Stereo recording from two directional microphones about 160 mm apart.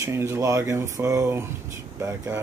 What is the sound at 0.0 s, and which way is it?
Speech, 15° right (ahead or behind).